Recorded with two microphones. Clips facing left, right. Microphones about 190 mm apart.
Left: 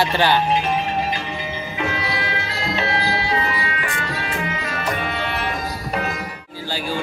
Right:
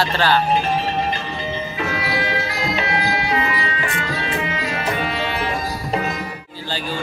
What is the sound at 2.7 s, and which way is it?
Music, 30° left (ahead or behind).